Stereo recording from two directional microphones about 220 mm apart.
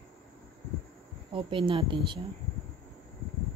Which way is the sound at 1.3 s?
25° right (ahead or behind).